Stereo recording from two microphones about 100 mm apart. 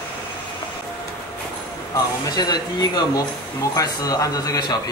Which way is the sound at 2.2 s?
40° left (ahead or behind).